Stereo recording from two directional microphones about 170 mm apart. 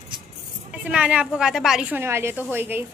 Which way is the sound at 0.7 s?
10° right (ahead or behind).